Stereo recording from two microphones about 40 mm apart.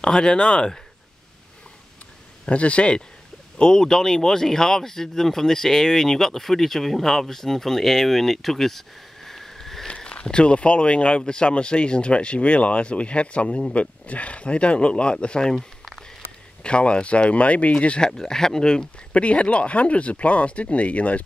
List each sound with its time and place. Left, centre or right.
0.0 s speech: centre
2.4 s speech: left
3.5 s speech: centre
9.8 s speech: left
15.5 s a sound: centre
16.6 s speech: left
18.1 s speech: centre
19.1 s speech: left